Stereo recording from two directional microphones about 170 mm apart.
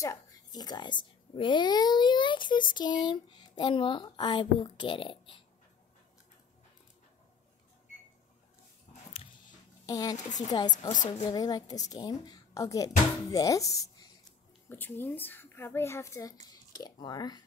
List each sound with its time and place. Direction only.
0.0 s a woman's voice: 20° left (ahead or behind)
9.1 s a sound: 30° left (ahead or behind)
9.8 s a child's voice: 20° left (ahead or behind)